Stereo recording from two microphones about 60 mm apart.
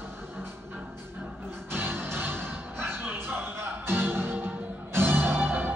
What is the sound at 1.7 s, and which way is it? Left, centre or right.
Music, right.